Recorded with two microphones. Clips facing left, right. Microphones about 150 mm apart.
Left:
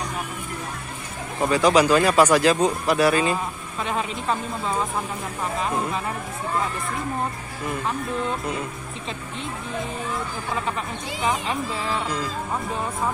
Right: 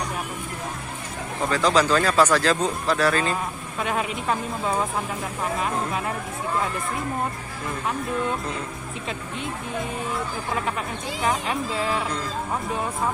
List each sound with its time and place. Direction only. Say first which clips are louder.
1.5 s speech: left 3 dB; 10° left (ahead or behind)
3.8 s speech: even; 5° right (ahead or behind)
11.2 s speech: even; 5° right (ahead or behind)